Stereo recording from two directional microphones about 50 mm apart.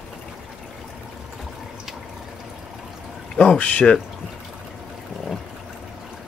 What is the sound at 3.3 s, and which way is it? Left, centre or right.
Speech, centre.